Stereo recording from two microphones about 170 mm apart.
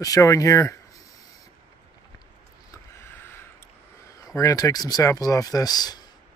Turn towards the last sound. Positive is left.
turn(degrees=25)  # may be behind; listen again after turning